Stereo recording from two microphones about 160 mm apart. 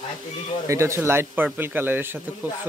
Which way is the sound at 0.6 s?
15° right (ahead or behind).